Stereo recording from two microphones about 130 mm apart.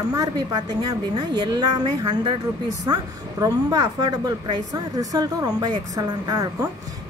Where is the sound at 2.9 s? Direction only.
30° right (ahead or behind).